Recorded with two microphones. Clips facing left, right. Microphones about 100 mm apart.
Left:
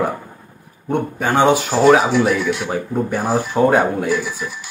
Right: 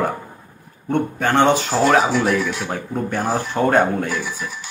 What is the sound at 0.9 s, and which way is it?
Speech, 10° left (ahead or behind).